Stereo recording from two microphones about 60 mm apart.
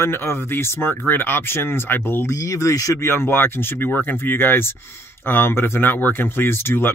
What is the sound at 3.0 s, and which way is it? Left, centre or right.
Speech, left.